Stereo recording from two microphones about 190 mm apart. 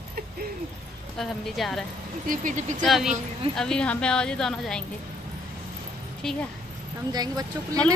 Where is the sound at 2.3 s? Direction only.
40° right (ahead or behind).